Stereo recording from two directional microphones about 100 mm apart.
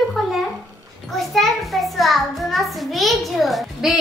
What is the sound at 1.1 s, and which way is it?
A child's voice, centre (ahead or behind).